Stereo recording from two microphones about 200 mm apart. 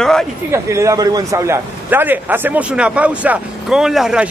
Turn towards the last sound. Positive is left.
turn(degrees=-5)  # may be behind; listen again after turning